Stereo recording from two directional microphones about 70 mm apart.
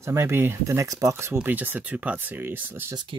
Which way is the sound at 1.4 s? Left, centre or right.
Right.